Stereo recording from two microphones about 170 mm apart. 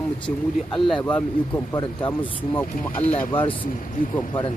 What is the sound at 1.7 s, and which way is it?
Speech, 15° left (ahead or behind).